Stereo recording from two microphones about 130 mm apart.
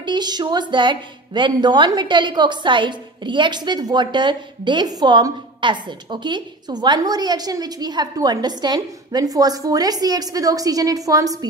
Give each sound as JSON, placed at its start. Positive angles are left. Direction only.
{"t": 0.0, "sound": "a woman's voice", "side_deg": -35}